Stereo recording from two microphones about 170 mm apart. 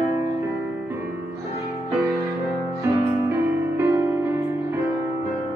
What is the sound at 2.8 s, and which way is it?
Music, 15° right (ahead or behind).